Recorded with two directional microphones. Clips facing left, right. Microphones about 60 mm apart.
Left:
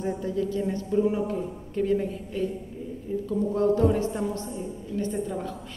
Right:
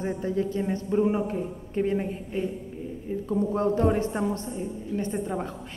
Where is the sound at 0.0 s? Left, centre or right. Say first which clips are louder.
Even; right.